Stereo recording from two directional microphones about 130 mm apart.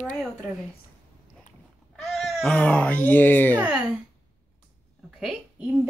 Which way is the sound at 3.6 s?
10° right (ahead or behind).